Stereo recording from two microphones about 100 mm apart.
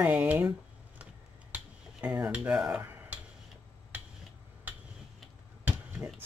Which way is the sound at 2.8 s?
20° right (ahead or behind).